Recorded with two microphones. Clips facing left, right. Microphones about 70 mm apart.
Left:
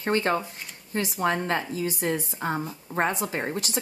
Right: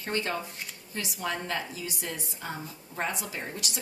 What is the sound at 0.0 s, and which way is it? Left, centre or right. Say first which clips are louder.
Speech: left 7 dB; left.